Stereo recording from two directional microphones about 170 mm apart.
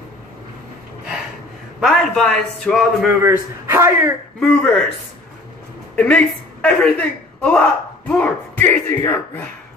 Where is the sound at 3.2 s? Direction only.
15° right (ahead or behind).